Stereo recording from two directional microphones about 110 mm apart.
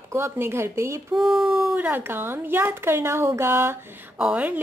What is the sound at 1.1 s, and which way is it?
Speech, centre (ahead or behind).